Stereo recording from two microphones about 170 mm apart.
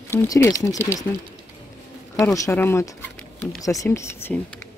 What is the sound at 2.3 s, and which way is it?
Speech, 15° left (ahead or behind).